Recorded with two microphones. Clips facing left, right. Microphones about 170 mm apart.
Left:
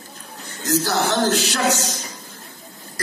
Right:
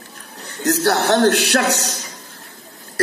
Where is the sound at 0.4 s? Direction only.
65° right (ahead or behind).